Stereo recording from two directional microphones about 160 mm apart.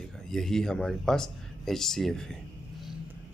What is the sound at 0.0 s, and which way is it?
Speech, 5° left (ahead or behind).